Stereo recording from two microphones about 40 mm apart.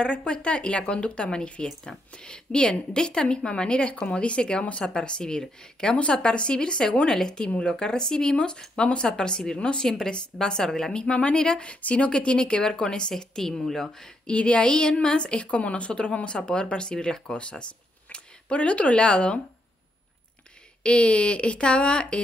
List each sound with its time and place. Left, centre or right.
0.0 s a woman's voice: left
11.0 s a woman's voice: left; by 13.8 s centre
14.2 s a woman's voice: left
20.8 s a woman's voice: left